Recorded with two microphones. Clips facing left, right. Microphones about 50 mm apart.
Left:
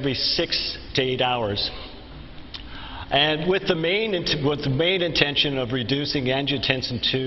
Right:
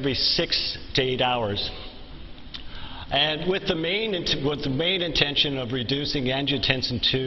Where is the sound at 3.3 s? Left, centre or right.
Centre.